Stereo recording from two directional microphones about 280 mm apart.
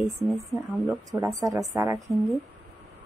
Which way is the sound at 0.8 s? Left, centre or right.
Centre.